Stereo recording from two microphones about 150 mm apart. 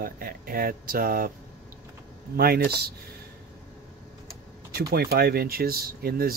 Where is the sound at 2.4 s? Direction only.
90° right.